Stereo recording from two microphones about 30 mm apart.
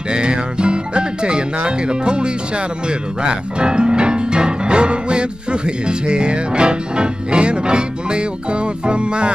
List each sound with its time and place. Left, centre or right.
0.1 s speech: right